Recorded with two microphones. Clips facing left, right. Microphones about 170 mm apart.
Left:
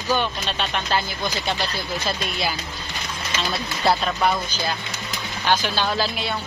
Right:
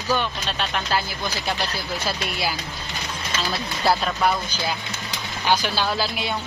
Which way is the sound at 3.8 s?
Centre (ahead or behind).